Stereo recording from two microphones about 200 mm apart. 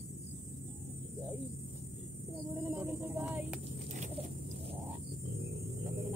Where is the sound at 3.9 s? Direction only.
35° right (ahead or behind).